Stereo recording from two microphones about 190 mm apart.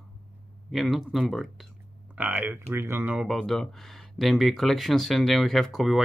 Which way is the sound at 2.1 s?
10° right (ahead or behind).